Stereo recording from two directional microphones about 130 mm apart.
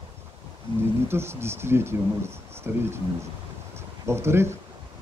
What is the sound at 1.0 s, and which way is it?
Speech, 20° right (ahead or behind).